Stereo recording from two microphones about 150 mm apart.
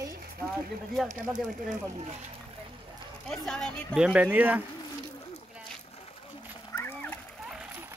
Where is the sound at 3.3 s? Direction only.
5° left (ahead or behind).